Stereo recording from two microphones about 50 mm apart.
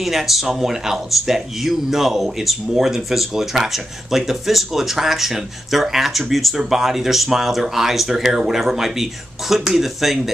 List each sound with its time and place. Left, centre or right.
0.0 s speech: centre